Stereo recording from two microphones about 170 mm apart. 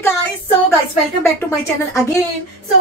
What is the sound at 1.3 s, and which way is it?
Speech, 15° left (ahead or behind).